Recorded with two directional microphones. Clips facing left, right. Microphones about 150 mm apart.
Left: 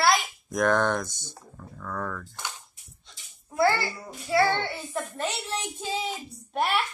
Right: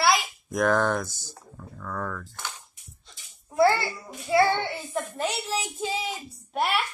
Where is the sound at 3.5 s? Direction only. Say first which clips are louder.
Right 3 dB; 20° right (ahead or behind).